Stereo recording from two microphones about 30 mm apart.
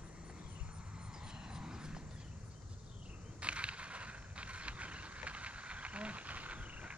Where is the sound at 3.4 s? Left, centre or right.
Right.